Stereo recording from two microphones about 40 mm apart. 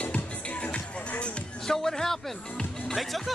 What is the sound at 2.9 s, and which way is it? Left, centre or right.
Music, centre.